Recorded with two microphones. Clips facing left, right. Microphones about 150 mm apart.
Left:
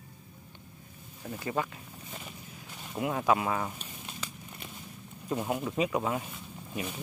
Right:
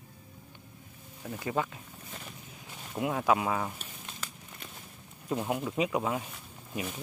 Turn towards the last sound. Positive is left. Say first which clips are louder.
# even
turn(degrees=0)  # may be behind; listen again after turning